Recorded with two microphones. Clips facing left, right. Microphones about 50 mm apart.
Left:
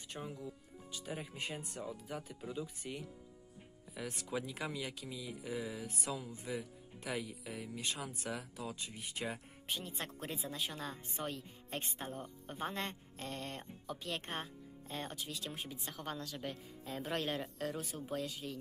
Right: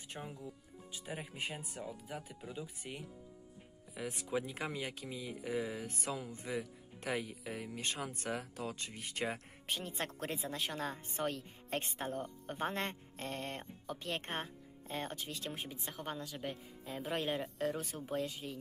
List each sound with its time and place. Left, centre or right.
0.2 s speech: centre
2.5 s a woman's voice: centre
17.7 s a woman's voice: right